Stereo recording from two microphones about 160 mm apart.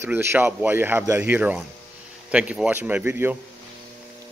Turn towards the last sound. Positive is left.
turn(degrees=-10)  # may be behind; listen again after turning